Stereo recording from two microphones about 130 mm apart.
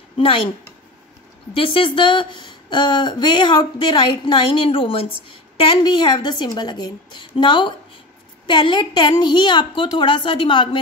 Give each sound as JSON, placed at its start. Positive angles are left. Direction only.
{"t": 1.5, "sound": "a woman's voice", "side_deg": 40}
{"t": 5.6, "sound": "a woman's voice", "side_deg": 35}